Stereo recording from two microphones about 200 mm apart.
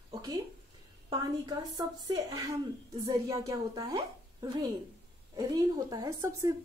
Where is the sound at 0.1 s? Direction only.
20° right (ahead or behind).